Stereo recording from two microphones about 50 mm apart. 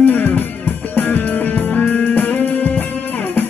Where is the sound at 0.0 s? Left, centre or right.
Left.